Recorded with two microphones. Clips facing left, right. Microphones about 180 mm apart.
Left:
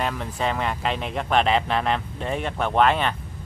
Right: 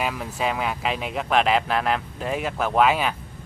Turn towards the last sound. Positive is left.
turn(degrees=-5)  # may be behind; listen again after turning